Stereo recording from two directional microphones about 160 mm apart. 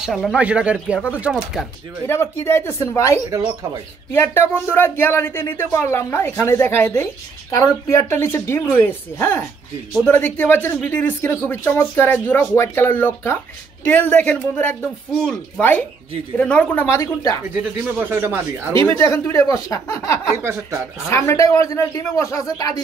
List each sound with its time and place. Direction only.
0.0 s speech: centre (ahead or behind)
2.0 s speech: 15° left (ahead or behind)
3.3 s speech: 20° right (ahead or behind)
4.1 s speech: 15° left (ahead or behind)
16.9 s a man's voice: 20° left (ahead or behind)
17.9 s speech: 15° right (ahead or behind)
18.8 s a man's voice: 20° left (ahead or behind)
20.3 s speech: 15° right (ahead or behind)
21.1 s a man's voice: 20° left (ahead or behind)